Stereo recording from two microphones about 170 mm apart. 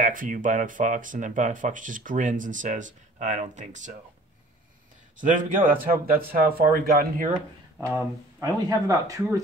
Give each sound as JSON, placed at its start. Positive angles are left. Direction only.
{"t": 0.0, "sound": "speech", "side_deg": -50}
{"t": 5.1, "sound": "speech", "side_deg": -50}
{"t": 7.8, "sound": "speech", "side_deg": -20}